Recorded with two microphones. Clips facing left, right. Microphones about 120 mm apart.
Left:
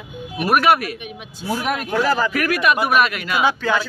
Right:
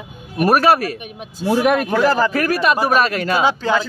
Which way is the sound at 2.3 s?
30° right (ahead or behind).